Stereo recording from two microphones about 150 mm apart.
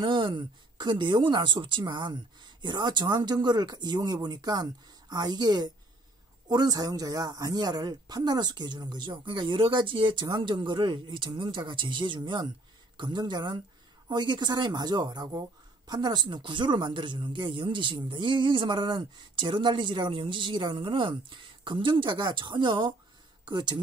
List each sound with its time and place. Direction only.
0.0 s speech: 35° right (ahead or behind)